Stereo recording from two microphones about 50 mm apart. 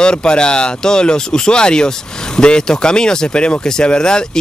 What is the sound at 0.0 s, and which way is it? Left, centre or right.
Speech, centre.